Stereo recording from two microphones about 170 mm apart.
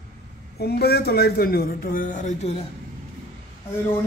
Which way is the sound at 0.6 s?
70° left (ahead or behind).